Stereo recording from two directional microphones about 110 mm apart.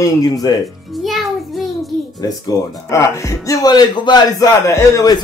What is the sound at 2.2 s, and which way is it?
Speech, 35° left (ahead or behind).